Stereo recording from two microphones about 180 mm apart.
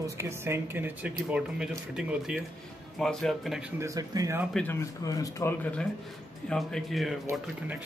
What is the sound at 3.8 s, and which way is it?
Speech, 20° right (ahead or behind).